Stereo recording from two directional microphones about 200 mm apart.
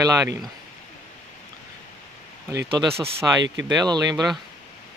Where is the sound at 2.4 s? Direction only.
15° right (ahead or behind).